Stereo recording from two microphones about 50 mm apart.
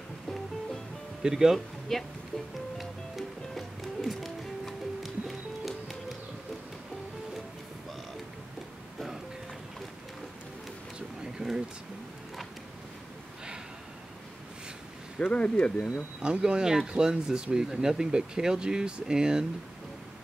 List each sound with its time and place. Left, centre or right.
1.2 s speech: centre
1.9 s speech: centre
2.8 s music: centre
11.3 s pigeon: centre
15.1 s speech: left
16.2 s speech: centre